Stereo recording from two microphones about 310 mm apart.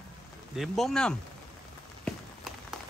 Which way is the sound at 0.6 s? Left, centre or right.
Centre.